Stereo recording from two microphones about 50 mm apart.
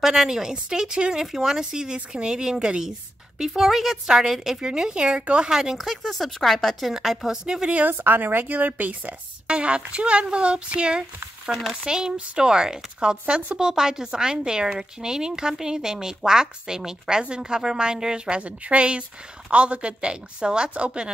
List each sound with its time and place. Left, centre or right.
0.0 s a woman's voice: centre
5.8 s speech: centre
7.4 s a woman's voice: centre
7.9 s a woman's voice: right
9.5 s a woman's voice: centre